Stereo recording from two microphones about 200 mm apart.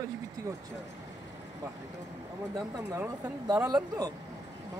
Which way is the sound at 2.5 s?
15° right (ahead or behind).